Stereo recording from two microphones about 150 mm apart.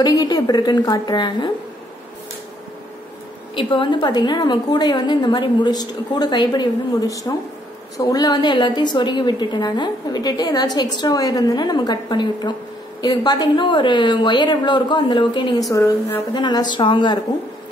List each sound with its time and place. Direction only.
0.0 s a woman's voice: 25° left (ahead or behind)
3.5 s a woman's voice: 35° left (ahead or behind)
15.7 s a woman's voice: 20° left (ahead or behind)